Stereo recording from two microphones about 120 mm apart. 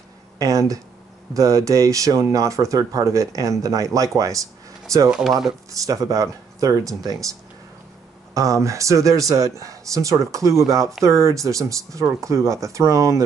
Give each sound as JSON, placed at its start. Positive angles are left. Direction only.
{"t": 0.4, "sound": "speech", "side_deg": -30}
{"t": 5.1, "sound": "speech", "side_deg": 0}
{"t": 5.7, "sound": "speech", "side_deg": -25}
{"t": 8.4, "sound": "speech", "side_deg": -25}